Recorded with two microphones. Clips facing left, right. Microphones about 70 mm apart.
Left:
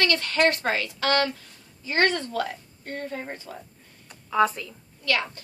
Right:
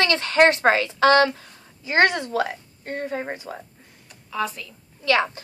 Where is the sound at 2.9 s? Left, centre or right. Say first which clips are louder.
Right 5 dB; right.